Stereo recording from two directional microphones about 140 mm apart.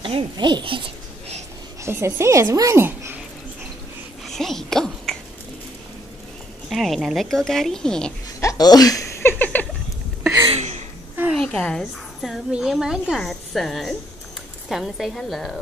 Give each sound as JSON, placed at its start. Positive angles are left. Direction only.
{"t": 0.0, "sound": "speech", "side_deg": -35}
{"t": 1.8, "sound": "speech", "side_deg": -20}
{"t": 4.3, "sound": "speech", "side_deg": 5}
{"t": 6.7, "sound": "a woman's voice", "side_deg": 0}
{"t": 8.4, "sound": "a sound", "side_deg": 25}
{"t": 10.5, "sound": "a sound", "side_deg": -50}
{"t": 11.3, "sound": "a woman's voice", "side_deg": 5}